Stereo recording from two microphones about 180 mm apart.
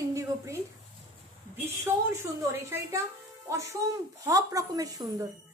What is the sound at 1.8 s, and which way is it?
A woman's voice, 15° right (ahead or behind).